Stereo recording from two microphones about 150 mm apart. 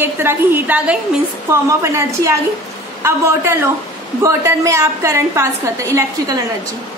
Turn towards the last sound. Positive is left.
turn(degrees=-20)  # may be behind; listen again after turning